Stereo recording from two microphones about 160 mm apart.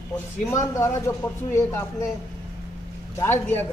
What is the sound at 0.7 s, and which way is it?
Speech, 15° left (ahead or behind).